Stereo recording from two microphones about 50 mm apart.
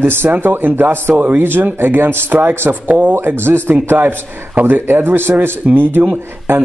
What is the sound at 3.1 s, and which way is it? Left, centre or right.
Speech, right.